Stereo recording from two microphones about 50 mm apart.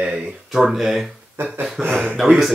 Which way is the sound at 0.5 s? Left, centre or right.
Centre.